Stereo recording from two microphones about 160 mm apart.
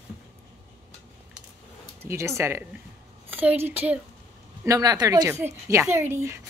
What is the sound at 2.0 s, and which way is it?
A woman's voice, 15° right (ahead or behind).